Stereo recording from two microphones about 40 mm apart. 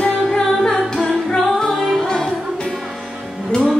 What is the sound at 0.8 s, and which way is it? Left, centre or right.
Music, centre.